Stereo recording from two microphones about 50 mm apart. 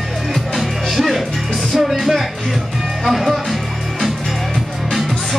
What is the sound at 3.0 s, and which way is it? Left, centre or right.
Music, centre.